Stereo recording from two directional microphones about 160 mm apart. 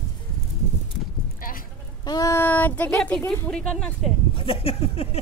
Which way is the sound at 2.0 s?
25° left (ahead or behind).